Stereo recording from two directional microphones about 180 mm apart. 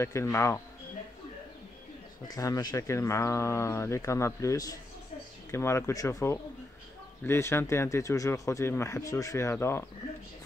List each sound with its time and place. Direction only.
0.0 s speech: 15° left (ahead or behind)
2.2 s speech: 20° left (ahead or behind)